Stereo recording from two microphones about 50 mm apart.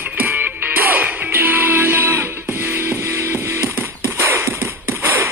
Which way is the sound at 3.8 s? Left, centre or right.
Right.